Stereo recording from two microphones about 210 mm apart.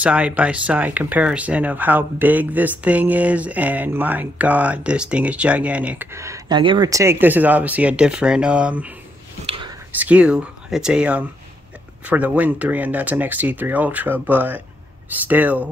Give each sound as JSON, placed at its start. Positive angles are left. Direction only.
{"t": 0.0, "sound": "speech", "side_deg": -5}
{"t": 9.5, "sound": "whispering", "side_deg": -20}
{"t": 9.9, "sound": "speech", "side_deg": -5}